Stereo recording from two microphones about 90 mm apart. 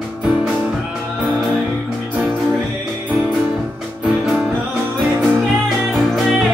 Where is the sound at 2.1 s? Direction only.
20° right (ahead or behind).